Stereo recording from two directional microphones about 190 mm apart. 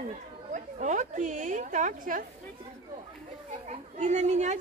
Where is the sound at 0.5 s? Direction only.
40° right (ahead or behind).